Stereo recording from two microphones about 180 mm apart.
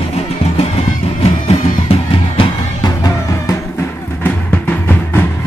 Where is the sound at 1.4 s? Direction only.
30° left (ahead or behind).